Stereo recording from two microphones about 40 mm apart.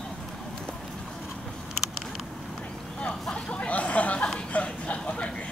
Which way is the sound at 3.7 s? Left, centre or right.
Left.